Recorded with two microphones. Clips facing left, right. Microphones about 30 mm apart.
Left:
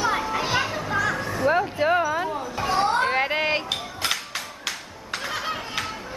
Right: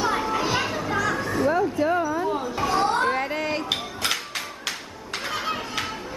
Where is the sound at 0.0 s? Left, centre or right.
Centre.